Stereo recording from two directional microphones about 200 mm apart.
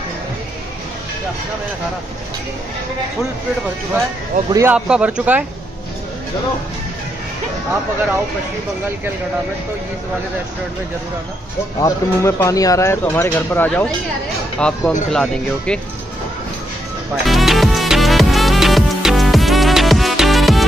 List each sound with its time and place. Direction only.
4.5 s speech: 15° right (ahead or behind)
4.7 s speech: 5° right (ahead or behind)
11.8 s speech: 15° left (ahead or behind)
17.3 s music: centre (ahead or behind)